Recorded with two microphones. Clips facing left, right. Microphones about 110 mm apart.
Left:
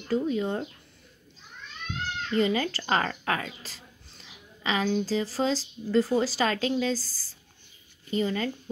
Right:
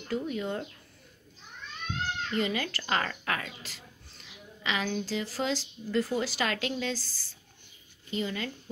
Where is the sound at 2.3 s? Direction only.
35° left (ahead or behind).